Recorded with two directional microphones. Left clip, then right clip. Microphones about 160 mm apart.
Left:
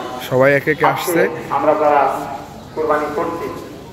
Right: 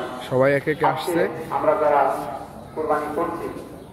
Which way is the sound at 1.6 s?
20° right (ahead or behind).